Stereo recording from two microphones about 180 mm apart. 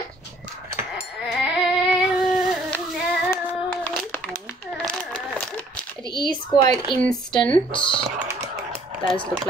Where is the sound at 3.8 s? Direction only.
5° left (ahead or behind).